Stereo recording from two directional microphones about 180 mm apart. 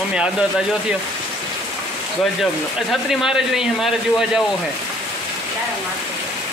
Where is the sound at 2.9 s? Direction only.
Centre (ahead or behind).